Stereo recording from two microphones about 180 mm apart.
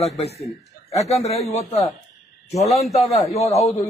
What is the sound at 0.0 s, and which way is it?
A man's voice, 35° left (ahead or behind).